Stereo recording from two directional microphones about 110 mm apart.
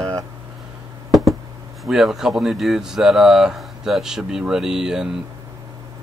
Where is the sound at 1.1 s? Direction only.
Centre (ahead or behind).